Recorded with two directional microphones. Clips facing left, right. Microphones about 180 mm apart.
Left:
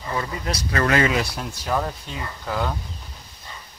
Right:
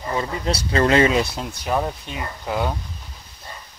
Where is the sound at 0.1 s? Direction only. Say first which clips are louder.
Right 3 dB; 25° right (ahead or behind).